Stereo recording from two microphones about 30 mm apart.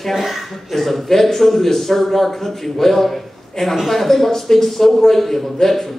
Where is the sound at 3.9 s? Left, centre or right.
Centre.